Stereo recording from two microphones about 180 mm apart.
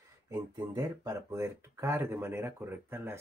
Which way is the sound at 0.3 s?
20° right (ahead or behind).